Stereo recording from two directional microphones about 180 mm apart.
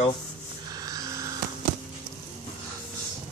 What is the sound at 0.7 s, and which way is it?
Music, 20° right (ahead or behind).